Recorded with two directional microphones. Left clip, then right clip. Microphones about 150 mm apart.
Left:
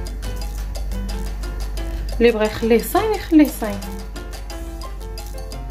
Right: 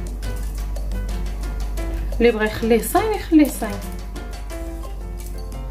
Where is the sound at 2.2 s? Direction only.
10° left (ahead or behind).